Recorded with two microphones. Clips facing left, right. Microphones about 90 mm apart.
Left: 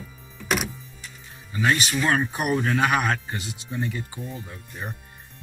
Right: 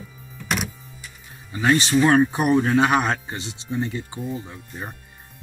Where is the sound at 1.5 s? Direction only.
30° right (ahead or behind).